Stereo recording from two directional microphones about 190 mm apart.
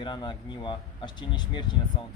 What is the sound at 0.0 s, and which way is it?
Speech, 25° left (ahead or behind).